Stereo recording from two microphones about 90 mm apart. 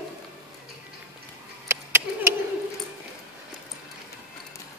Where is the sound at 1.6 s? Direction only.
30° right (ahead or behind).